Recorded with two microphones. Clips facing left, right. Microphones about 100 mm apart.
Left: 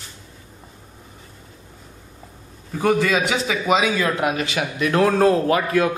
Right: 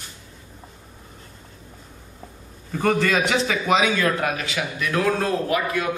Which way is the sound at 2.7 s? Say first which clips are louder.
Left 2 dB; 5° left (ahead or behind).